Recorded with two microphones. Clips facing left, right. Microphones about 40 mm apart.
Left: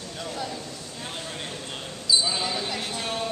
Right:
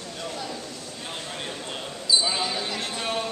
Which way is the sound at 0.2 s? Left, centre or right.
Centre.